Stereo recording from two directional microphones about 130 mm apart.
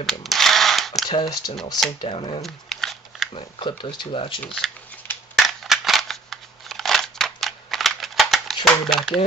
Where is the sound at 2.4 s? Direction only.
5° left (ahead or behind).